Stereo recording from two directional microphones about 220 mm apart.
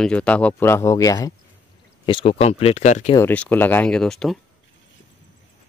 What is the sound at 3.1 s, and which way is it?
Speech, 10° left (ahead or behind).